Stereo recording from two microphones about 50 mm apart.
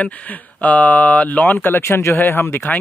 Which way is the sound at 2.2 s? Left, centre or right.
Left.